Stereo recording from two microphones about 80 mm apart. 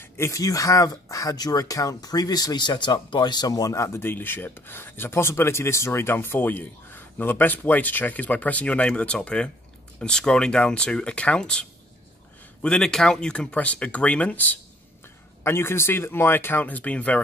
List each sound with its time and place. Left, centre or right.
0.3 s speech: left
4.0 s speech: left
12.6 s speech: centre
15.4 s speech: left